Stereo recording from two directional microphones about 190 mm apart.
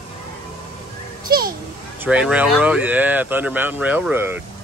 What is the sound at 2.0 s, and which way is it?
Speech, 5° right (ahead or behind).